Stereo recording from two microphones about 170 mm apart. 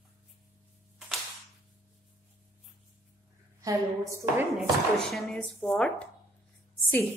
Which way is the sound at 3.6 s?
20° right (ahead or behind).